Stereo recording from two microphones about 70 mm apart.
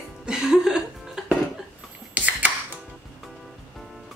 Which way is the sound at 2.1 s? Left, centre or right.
Right.